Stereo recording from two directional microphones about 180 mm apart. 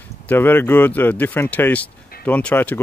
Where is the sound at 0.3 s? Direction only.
10° left (ahead or behind).